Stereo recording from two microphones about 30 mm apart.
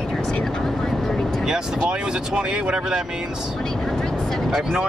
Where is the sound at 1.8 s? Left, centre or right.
Right.